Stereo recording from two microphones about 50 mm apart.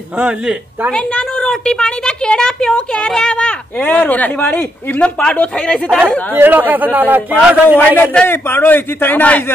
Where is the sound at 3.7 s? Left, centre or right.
Left.